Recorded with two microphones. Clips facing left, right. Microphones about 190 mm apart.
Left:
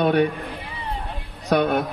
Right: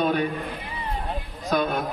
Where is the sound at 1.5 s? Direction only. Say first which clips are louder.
Left 5 dB; 70° left (ahead or behind).